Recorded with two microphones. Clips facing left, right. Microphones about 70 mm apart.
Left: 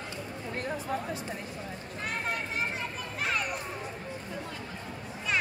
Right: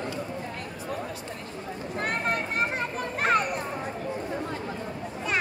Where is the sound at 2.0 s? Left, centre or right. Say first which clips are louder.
Right 5 dB; right.